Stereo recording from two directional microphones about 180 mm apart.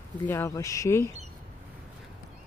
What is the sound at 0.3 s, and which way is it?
Speech, 15° left (ahead or behind).